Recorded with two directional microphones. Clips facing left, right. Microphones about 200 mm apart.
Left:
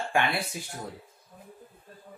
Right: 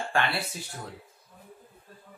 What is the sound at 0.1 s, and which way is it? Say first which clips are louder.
Speech: left 1 dB; 15° left (ahead or behind).